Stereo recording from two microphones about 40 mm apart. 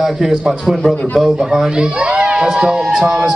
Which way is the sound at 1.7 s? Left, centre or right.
Right.